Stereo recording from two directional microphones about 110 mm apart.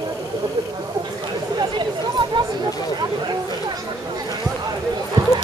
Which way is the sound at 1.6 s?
45° right (ahead or behind).